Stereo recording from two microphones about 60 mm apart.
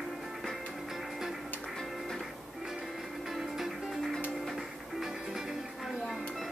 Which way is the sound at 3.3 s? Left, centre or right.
Centre.